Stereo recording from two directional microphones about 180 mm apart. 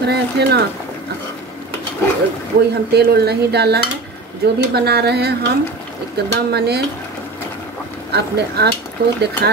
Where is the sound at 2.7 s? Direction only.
65° right (ahead or behind).